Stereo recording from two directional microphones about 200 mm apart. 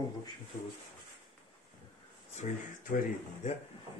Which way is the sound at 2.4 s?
35° left (ahead or behind).